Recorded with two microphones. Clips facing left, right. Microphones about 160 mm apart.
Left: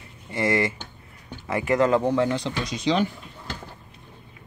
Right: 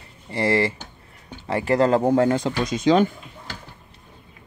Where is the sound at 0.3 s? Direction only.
30° right (ahead or behind); by 3.2 s 50° right (ahead or behind).